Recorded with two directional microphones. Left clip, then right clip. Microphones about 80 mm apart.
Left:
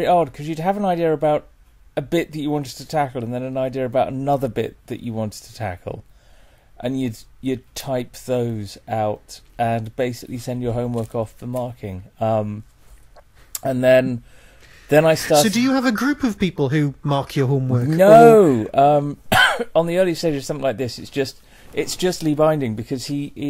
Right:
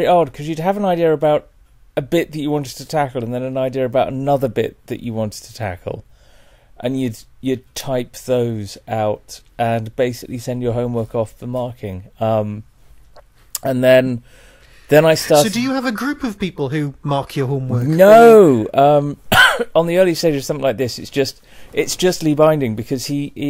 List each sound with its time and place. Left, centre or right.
0.0 s speech: right
13.1 s a sound: right
14.9 s speech: right
15.3 s speech: centre
17.9 s speech: right